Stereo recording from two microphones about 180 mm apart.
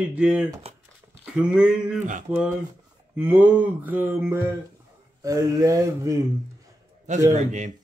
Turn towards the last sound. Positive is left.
turn(degrees=-40)  # may be behind; listen again after turning